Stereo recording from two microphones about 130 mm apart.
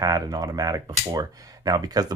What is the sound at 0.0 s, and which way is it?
Speech, 30° right (ahead or behind).